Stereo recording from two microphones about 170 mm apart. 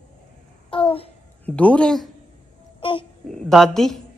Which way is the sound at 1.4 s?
5° left (ahead or behind).